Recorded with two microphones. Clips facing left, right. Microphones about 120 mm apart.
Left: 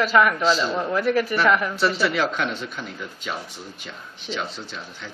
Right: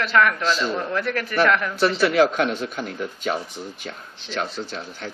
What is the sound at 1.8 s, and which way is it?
Speech, centre (ahead or behind).